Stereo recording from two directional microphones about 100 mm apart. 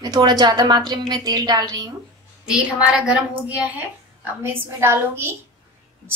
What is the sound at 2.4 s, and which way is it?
A woman's voice, 10° right (ahead or behind).